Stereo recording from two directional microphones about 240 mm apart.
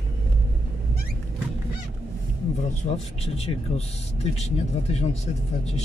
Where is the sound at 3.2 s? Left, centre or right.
Left.